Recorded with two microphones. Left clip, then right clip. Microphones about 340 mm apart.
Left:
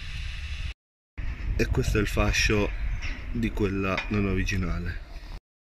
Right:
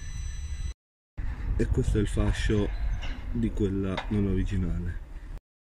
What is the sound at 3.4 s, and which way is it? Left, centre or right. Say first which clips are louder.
Cutlery: left 2 dB; left.